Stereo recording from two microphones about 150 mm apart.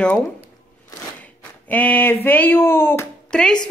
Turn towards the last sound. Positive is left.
turn(degrees=5)  # may be behind; listen again after turning